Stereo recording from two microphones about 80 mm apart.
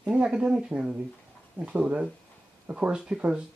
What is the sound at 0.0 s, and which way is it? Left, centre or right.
Speech, centre.